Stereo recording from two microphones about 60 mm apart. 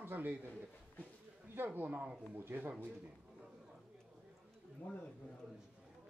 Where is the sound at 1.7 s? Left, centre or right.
Right.